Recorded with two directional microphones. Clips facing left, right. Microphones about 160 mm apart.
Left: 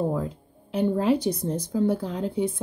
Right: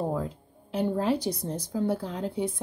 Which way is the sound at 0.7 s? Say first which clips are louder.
Left 4 dB; 15° left (ahead or behind).